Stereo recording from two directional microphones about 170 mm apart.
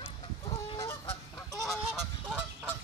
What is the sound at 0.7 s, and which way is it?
Goose, 15° left (ahead or behind).